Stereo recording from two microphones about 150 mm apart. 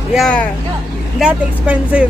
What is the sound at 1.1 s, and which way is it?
Speech, 5° right (ahead or behind).